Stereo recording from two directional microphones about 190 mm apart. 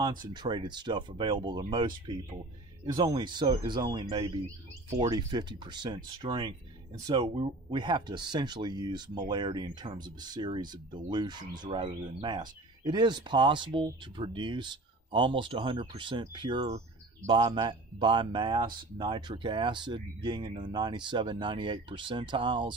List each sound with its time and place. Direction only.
0.0 s speech: 20° right (ahead or behind)